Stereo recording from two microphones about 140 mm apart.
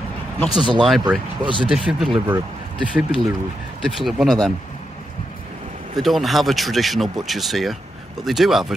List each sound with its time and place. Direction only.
0.7 s speech: centre (ahead or behind)
1.4 s speech: 35° right (ahead or behind)
1.7 s speech: 5° right (ahead or behind)
5.9 s speech: centre (ahead or behind)